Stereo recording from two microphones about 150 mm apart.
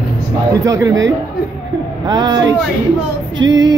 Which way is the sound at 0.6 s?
20° right (ahead or behind).